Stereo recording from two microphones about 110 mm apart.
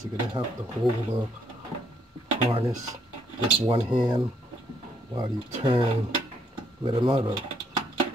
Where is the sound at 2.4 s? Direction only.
55° right (ahead or behind).